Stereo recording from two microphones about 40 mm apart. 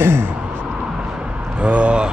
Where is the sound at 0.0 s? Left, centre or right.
Right.